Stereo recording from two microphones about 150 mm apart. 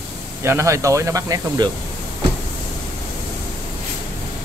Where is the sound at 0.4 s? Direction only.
20° right (ahead or behind).